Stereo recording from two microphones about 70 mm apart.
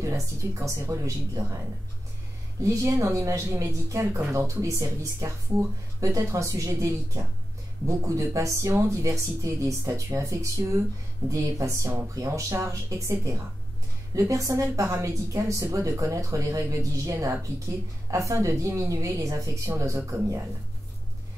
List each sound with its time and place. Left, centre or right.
0.0 s a woman's voice: right
2.6 s a woman's voice: right
4.6 s a woman's voice: right
19.7 s speech: right